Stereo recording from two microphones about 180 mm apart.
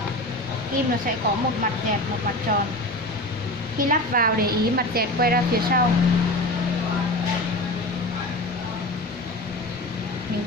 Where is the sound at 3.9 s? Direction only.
50° right (ahead or behind).